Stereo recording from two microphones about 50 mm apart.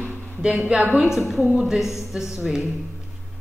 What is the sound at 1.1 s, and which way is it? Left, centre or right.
A woman's voice, centre.